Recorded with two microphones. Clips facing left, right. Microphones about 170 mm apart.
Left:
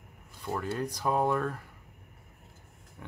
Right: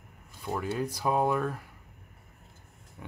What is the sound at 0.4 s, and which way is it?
Speech, 5° right (ahead or behind).